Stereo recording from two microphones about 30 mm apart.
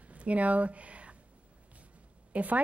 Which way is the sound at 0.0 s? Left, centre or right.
Right.